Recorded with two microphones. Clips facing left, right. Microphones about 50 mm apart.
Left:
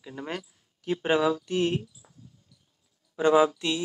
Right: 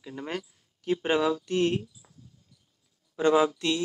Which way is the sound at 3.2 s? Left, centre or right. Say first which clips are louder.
Left 2 dB; centre.